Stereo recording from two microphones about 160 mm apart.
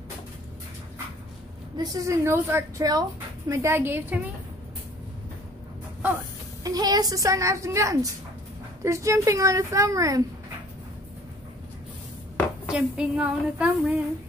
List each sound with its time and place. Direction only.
1.8 s a woman's voice: 20° right (ahead or behind)
2.8 s a woman's voice: 25° right (ahead or behind)
6.6 s a woman's voice: 25° right (ahead or behind)
12.6 s a woman's voice: 5° right (ahead or behind)